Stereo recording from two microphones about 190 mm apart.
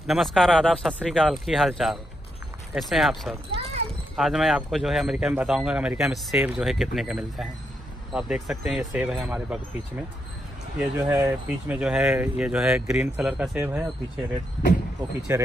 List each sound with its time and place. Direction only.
0.0 s speech: centre (ahead or behind)
3.5 s a sound: 30° right (ahead or behind)
4.2 s speech: centre (ahead or behind)
11.0 s speech: 15° right (ahead or behind)
15.3 s speech: 15° right (ahead or behind)